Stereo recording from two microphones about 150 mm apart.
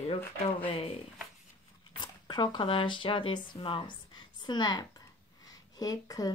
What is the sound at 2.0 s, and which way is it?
Speech, 30° left (ahead or behind).